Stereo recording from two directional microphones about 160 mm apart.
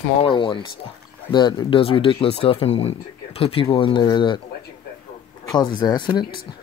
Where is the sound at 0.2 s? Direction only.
30° left (ahead or behind).